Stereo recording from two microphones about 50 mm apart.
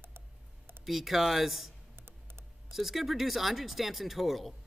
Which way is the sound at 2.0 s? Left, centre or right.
Right.